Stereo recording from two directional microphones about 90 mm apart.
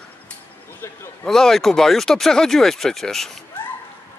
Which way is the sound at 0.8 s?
30° left (ahead or behind).